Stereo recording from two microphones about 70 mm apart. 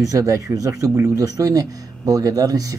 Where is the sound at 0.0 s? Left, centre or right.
Right.